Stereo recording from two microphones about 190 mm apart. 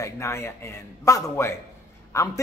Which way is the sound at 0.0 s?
15° left (ahead or behind).